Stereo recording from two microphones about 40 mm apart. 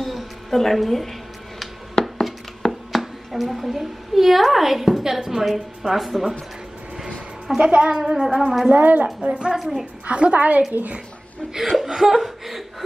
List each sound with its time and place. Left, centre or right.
0.0 s music: centre
1.6 s a sound: centre
5.8 s a woman's voice: centre
7.5 s a woman's voice: centre
8.4 s a woman's voice: centre
8.6 s a woman's voice: right
9.6 s a woman's voice: centre
10.0 s a woman's voice: right
11.5 s speech: centre